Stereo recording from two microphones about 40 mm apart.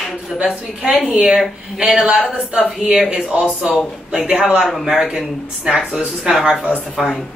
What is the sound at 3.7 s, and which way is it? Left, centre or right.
Speech, centre.